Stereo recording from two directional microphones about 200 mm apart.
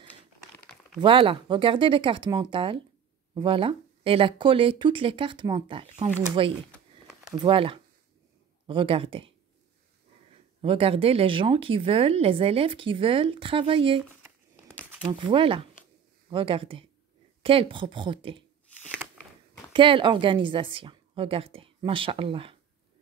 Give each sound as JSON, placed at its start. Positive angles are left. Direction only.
{"t": 1.0, "sound": "speech", "side_deg": -25}
{"t": 10.6, "sound": "speech", "side_deg": -25}
{"t": 15.1, "sound": "speech", "side_deg": -25}
{"t": 19.7, "sound": "speech", "side_deg": -25}